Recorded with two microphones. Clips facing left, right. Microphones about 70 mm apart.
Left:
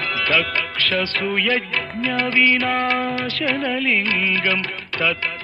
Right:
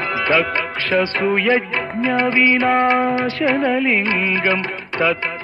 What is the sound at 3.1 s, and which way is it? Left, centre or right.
Music, right.